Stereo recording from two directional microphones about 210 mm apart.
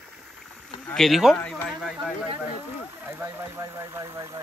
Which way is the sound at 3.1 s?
10° right (ahead or behind).